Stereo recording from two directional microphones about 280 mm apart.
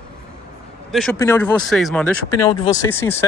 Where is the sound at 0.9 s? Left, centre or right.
Centre.